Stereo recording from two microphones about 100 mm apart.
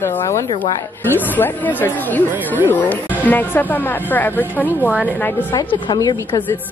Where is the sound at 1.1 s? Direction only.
20° left (ahead or behind).